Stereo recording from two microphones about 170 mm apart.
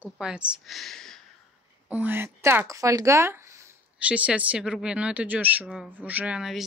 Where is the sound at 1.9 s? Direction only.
10° right (ahead or behind).